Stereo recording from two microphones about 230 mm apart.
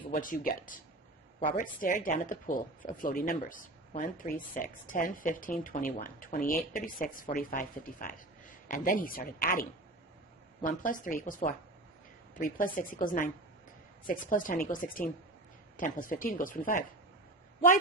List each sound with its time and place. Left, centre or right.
0.1 s speech: left